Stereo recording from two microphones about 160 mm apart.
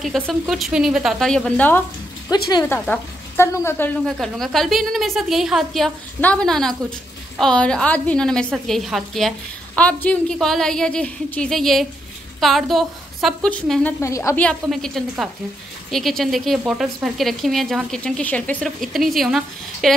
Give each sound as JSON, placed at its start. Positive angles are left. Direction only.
{"t": 0.0, "sound": "a woman's voice", "side_deg": 0}
{"t": 4.2, "sound": "a woman's voice", "side_deg": 0}
{"t": 14.0, "sound": "a woman's voice", "side_deg": 20}
{"t": 14.4, "sound": "a woman's voice", "side_deg": 5}